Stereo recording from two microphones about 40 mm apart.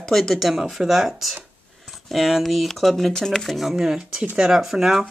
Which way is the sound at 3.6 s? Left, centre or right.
Centre.